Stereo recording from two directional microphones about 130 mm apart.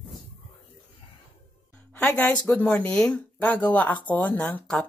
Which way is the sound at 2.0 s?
10° left (ahead or behind).